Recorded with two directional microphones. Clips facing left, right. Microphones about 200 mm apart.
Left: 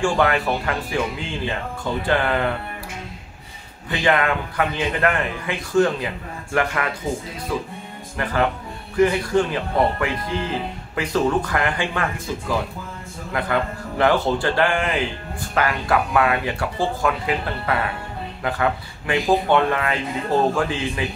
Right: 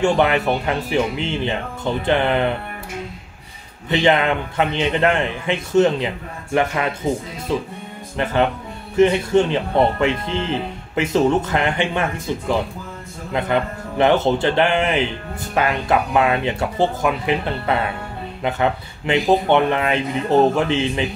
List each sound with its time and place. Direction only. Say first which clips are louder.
0.0 s speech: right 3 dB; 20° right (ahead or behind)
3.9 s speech: right 3 dB; 20° right (ahead or behind)